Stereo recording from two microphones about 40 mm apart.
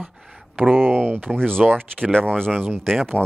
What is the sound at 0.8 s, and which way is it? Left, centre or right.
Speech, right.